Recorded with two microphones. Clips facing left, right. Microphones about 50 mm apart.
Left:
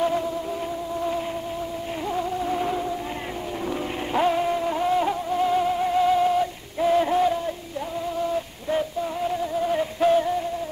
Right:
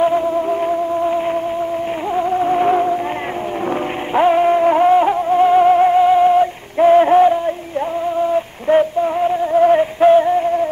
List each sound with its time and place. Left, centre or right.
0.5 s music: right
4.1 s music: right
5.9 s music: right
8.6 s male singing: right
9.9 s music: right